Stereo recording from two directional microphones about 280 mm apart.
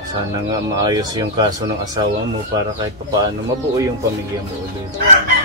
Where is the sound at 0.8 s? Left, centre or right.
Centre.